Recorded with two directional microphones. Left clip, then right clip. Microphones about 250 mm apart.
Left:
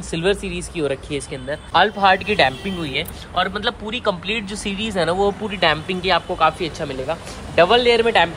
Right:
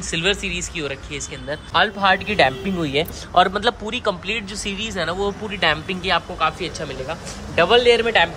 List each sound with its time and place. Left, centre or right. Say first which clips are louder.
0.1 s speech: even; centre
1.5 s speech: left 2 dB; centre